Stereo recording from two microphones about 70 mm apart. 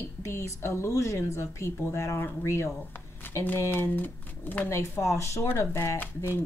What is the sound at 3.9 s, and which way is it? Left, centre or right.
Speech, left.